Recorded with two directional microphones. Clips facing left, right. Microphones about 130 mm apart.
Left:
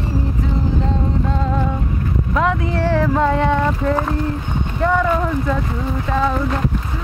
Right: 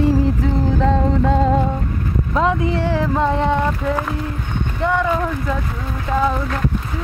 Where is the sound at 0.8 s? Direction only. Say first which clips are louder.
Right 5 dB; 60° right (ahead or behind).